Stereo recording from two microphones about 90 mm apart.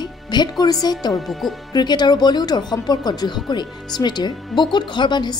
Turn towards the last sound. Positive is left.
turn(degrees=55)  # may be behind; listen again after turning